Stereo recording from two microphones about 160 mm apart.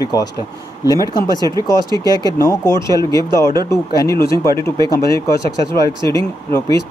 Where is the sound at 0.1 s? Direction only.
20° left (ahead or behind).